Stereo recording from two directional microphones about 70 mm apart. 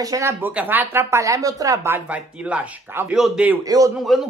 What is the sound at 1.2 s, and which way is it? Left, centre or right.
Speech, right.